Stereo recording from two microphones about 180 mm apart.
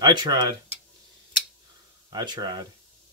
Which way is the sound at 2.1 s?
25° right (ahead or behind).